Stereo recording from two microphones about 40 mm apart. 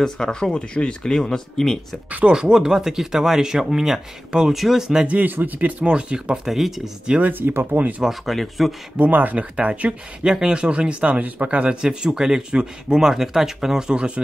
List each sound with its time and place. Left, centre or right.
0.0 s speech: centre
2.2 s speech: right
5.0 s speech: right
5.9 s speech: right
6.4 s speech: centre
7.2 s speech: right
7.7 s speech: right
8.3 s speech: centre
8.9 s speech: right
9.4 s speech: right
10.2 s speech: right
11.8 s speech: right